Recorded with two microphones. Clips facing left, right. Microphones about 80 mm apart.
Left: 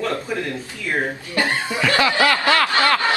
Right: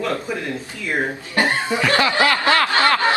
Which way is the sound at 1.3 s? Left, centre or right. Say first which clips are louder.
Right 3 dB; right.